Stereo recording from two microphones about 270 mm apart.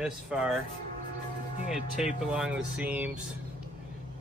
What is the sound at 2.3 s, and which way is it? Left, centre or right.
Speech, centre.